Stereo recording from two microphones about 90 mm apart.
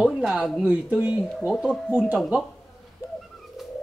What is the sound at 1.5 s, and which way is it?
Speech, 5° right (ahead or behind).